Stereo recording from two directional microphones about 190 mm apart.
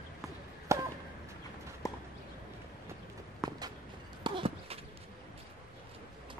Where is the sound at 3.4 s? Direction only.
20° right (ahead or behind).